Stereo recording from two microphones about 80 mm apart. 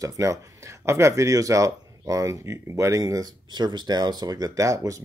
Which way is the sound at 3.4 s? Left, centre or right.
Right.